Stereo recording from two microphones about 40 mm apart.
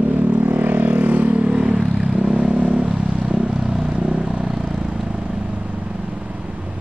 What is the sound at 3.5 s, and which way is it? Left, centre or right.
Vehicle, centre.